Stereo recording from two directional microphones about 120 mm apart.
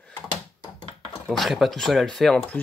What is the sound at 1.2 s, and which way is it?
Speech, centre (ahead or behind).